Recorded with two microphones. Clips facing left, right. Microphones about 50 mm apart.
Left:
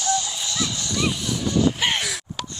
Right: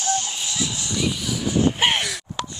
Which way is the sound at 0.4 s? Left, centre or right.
Right.